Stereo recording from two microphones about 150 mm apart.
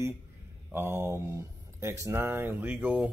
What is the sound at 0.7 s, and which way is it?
Speech, 15° right (ahead or behind).